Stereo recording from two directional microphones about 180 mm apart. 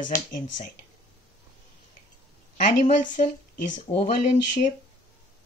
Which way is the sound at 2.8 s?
45° left (ahead or behind).